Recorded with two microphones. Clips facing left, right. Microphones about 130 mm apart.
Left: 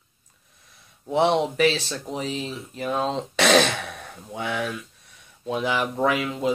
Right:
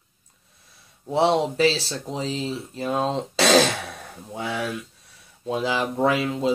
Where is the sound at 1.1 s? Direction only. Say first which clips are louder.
Even; 30° right (ahead or behind).